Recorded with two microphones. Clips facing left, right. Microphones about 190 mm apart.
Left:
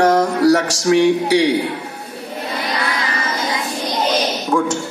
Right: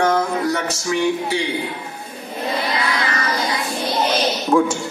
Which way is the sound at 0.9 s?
75° left (ahead or behind).